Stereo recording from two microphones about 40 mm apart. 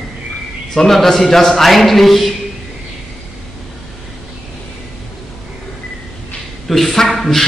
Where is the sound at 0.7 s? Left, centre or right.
Centre.